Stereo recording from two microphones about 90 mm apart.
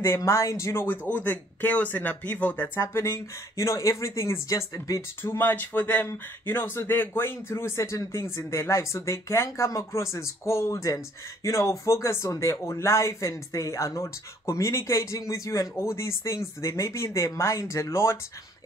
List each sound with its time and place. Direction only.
0.0 s speech: 30° left (ahead or behind)
1.1 s speech: 20° left (ahead or behind); by 5.0 s 40° left (ahead or behind)
5.2 s speech: 25° left (ahead or behind)